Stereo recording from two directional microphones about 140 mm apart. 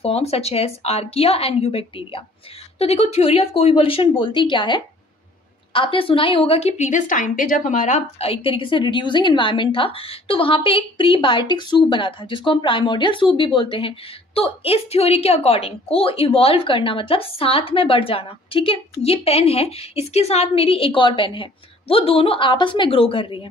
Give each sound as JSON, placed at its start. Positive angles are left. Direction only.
{"t": 0.0, "sound": "a woman's voice", "side_deg": 45}
{"t": 8.3, "sound": "a woman's voice", "side_deg": 40}